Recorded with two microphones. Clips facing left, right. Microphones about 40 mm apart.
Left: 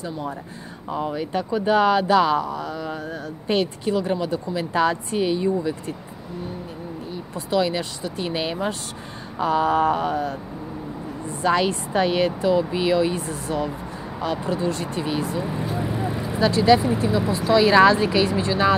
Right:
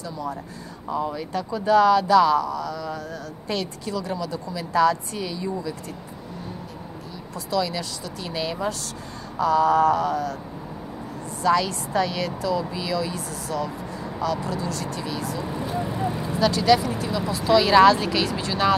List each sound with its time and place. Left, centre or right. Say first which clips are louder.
0.0 s speech: left 1 dB; left
7.3 s speech: left 3 dB; left